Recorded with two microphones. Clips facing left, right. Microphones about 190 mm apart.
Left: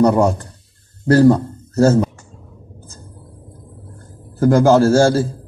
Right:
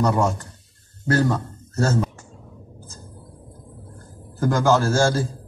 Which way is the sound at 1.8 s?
30° left (ahead or behind).